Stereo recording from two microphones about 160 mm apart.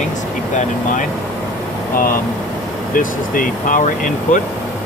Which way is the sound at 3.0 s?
55° left (ahead or behind).